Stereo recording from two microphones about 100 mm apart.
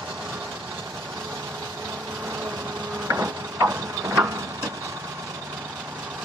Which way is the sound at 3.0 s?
30° right (ahead or behind).